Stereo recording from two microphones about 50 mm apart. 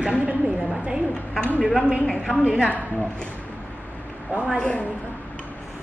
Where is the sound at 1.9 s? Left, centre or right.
Centre.